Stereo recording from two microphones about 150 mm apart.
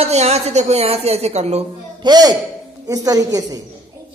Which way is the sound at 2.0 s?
25° right (ahead or behind).